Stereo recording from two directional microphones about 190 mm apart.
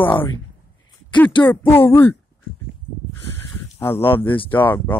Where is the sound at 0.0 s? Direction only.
10° left (ahead or behind).